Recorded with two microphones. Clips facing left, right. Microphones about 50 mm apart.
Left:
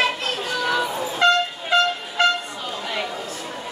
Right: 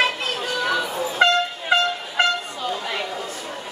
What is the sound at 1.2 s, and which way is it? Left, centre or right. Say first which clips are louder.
Vehicle: even; right.